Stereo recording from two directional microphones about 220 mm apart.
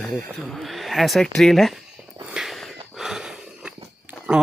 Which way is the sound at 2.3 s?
Centre (ahead or behind).